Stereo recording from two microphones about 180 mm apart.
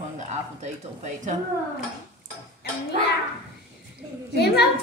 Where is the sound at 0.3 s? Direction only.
40° right (ahead or behind).